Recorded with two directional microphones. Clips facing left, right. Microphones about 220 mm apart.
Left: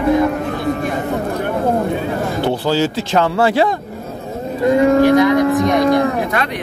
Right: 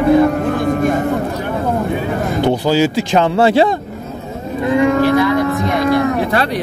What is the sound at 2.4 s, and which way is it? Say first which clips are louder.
Speech: right 3 dB; 15° right (ahead or behind).